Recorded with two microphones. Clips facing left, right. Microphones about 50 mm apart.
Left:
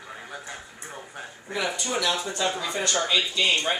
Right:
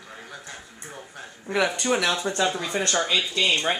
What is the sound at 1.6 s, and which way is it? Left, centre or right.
Speech, right.